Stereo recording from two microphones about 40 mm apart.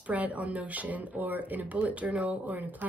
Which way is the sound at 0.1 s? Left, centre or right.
Right.